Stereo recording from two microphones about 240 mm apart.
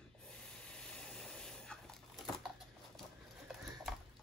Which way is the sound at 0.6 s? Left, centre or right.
Centre.